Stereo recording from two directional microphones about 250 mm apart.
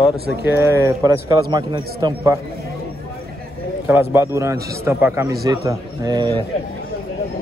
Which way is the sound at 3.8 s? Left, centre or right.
Centre.